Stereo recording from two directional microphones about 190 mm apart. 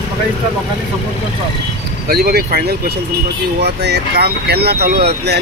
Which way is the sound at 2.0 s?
55° right (ahead or behind).